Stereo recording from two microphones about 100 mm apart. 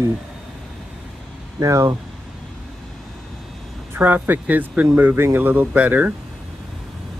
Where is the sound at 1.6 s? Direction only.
35° right (ahead or behind).